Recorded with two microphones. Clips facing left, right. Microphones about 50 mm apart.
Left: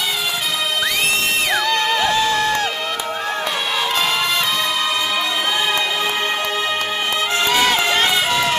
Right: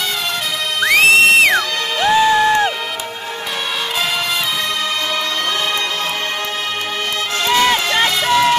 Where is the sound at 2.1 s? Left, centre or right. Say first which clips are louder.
Right 5 dB; centre.